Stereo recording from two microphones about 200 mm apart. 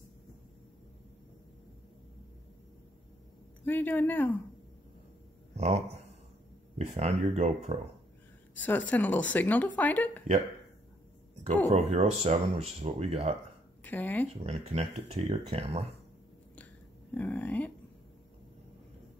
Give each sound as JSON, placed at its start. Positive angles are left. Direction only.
{"t": 3.6, "sound": "speech", "side_deg": 10}
{"t": 5.6, "sound": "speech", "side_deg": -35}
{"t": 7.0, "sound": "speech", "side_deg": -35}
{"t": 8.5, "sound": "speech", "side_deg": 10}
{"t": 11.7, "sound": "speech", "side_deg": -30}
{"t": 13.8, "sound": "speech", "side_deg": 10}
{"t": 14.4, "sound": "speech", "side_deg": -35}
{"t": 17.1, "sound": "speech", "side_deg": 10}